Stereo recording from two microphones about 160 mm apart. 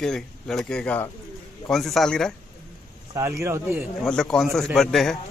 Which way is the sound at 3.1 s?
20° right (ahead or behind).